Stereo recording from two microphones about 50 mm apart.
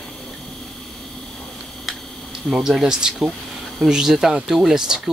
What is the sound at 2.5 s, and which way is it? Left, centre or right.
Speech, centre.